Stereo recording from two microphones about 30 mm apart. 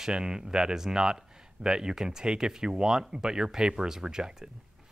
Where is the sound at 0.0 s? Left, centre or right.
Right.